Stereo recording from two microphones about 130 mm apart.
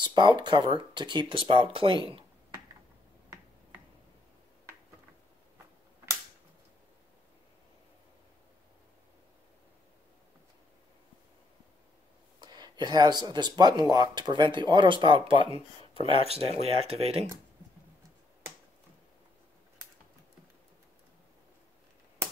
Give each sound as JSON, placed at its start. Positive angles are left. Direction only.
{"t": 0.0, "sound": "speech", "side_deg": -35}
{"t": 12.4, "sound": "speech", "side_deg": -35}